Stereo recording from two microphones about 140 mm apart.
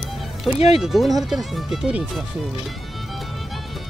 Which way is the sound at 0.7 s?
Centre (ahead or behind).